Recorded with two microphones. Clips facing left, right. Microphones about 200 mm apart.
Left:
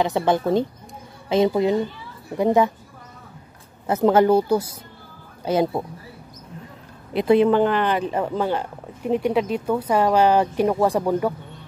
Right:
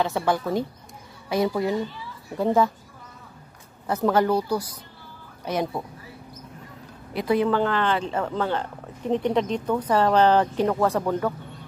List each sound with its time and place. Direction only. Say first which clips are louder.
0.0 s speech: left 4 dB; 20° left (ahead or behind)
3.8 s speech: left 5 dB; 25° left (ahead or behind)
7.2 s speech: left 6 dB; 25° left (ahead or behind)